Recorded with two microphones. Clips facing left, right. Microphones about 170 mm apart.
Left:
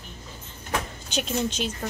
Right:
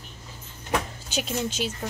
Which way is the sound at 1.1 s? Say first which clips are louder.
Left 2 dB; 5° right (ahead or behind).